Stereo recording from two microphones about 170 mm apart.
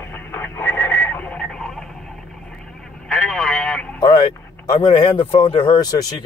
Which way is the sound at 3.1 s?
5° left (ahead or behind).